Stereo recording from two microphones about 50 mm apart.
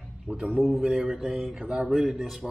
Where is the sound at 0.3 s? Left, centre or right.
Centre.